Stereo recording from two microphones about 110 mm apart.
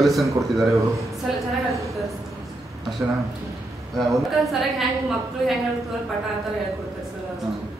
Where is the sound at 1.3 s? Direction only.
5° right (ahead or behind).